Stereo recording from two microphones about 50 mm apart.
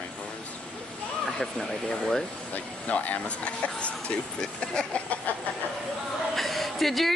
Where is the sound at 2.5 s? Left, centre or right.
Left.